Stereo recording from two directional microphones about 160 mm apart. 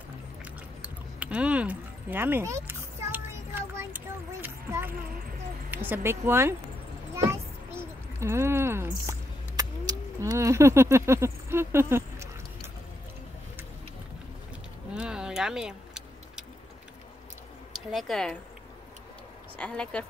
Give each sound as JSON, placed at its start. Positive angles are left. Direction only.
{"t": 0.8, "sound": "a sound", "side_deg": -5}
{"t": 5.7, "sound": "speech", "side_deg": -10}
{"t": 7.2, "sound": "a sound", "side_deg": -15}
{"t": 15.0, "sound": "vehicle", "side_deg": -5}
{"t": 17.7, "sound": "speech", "side_deg": 0}
{"t": 19.6, "sound": "a woman's voice", "side_deg": 5}